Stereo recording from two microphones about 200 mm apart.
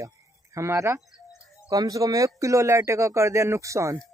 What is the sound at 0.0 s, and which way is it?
Speech, 15° right (ahead or behind).